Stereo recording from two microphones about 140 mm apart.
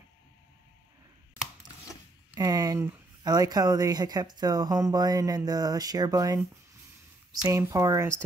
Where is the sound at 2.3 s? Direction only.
25° right (ahead or behind).